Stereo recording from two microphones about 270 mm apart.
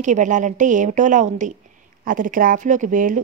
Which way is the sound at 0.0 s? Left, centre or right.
Right.